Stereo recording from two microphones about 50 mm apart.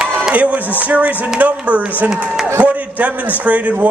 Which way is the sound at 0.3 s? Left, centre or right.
Right.